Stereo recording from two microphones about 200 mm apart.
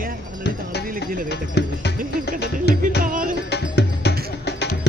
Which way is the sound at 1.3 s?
55° left (ahead or behind).